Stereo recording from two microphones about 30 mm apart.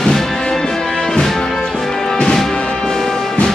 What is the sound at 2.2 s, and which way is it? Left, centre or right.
Music, centre.